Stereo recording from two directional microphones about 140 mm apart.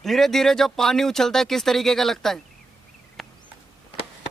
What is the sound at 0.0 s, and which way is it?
Speech, centre (ahead or behind).